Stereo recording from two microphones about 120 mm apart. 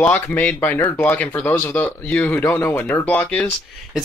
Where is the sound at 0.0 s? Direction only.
15° left (ahead or behind).